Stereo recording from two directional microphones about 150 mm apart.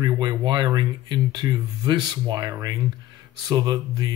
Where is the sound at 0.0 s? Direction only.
25° right (ahead or behind).